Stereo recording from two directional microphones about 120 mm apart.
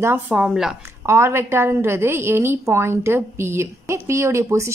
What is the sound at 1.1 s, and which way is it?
A woman's voice, 20° right (ahead or behind).